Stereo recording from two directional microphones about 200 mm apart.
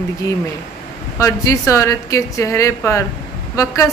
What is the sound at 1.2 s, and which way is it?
A woman's voice, 15° left (ahead or behind).